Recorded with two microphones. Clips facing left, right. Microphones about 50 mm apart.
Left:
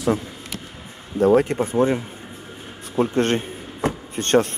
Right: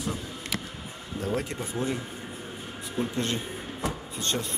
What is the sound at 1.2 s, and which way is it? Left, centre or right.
Speech, left.